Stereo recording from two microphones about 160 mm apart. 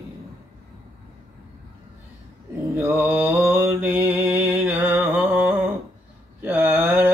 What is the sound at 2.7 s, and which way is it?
Mantra, 15° right (ahead or behind).